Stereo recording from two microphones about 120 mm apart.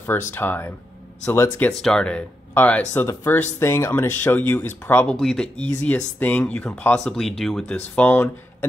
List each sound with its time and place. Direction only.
0.3 s speech: 20° left (ahead or behind)
1.7 s speech: 5° left (ahead or behind)
5.1 s speech: 5° left (ahead or behind)